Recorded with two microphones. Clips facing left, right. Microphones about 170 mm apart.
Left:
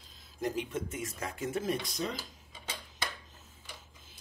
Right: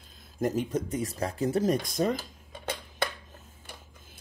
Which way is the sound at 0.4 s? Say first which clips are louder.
Right 6 dB; 45° right (ahead or behind).